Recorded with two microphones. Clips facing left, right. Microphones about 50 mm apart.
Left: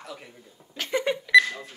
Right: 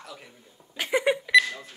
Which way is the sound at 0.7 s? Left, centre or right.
Centre.